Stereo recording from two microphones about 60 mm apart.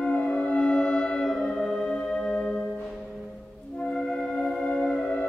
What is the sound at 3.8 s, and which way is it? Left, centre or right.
Theremin, centre.